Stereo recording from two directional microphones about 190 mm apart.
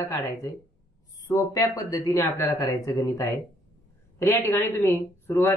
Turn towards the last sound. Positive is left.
turn(degrees=15)  # may be behind; listen again after turning